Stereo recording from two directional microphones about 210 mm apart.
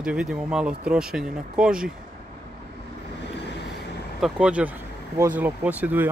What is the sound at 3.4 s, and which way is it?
Vehicle, 55° left (ahead or behind).